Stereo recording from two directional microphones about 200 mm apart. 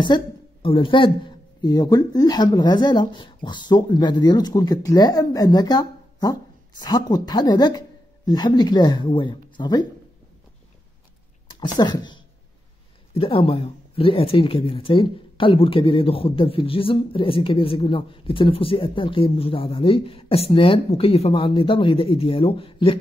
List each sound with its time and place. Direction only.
0.0 s a woman's voice: 25° left (ahead or behind)
11.4 s speech: 20° left (ahead or behind)